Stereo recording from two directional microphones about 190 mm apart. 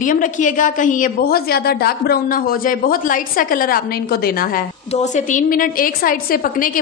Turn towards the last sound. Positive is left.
turn(degrees=45)  # may be behind; listen again after turning